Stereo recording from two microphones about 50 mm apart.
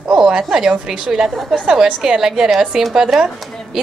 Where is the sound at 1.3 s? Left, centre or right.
Centre.